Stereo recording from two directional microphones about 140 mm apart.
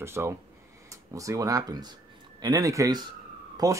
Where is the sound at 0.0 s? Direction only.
20° right (ahead or behind).